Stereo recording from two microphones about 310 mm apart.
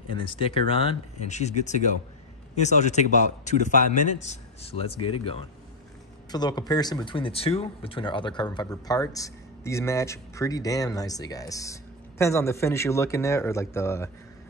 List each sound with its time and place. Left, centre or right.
0.1 s a man's voice: centre